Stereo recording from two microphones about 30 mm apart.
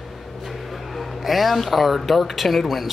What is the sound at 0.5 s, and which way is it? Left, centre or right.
Speech, centre.